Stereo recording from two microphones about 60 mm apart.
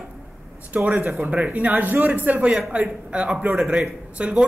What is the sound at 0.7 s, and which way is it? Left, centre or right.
A man's voice, centre.